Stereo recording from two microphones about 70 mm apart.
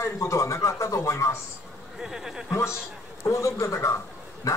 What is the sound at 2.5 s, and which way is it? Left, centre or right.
A man's voice, left.